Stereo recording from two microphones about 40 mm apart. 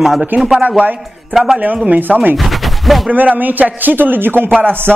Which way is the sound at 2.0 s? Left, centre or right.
Right.